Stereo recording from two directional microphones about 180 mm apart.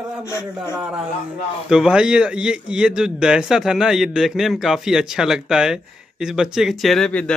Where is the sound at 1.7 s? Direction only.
5° right (ahead or behind).